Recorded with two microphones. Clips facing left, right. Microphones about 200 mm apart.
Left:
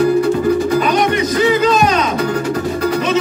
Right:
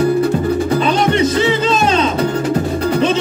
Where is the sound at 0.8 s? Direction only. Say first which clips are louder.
Right 1 dB; 30° right (ahead or behind).